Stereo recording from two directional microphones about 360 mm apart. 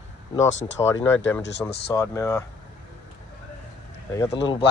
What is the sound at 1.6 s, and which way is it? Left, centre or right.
Speech, centre.